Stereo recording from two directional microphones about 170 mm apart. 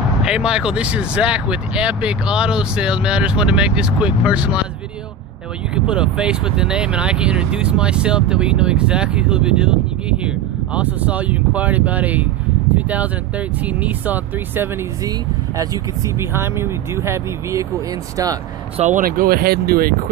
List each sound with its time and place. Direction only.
0.2 s speech: 5° right (ahead or behind)
5.9 s speech: 5° right (ahead or behind); by 18.4 s 20° right (ahead or behind)
18.8 s speech: 50° right (ahead or behind)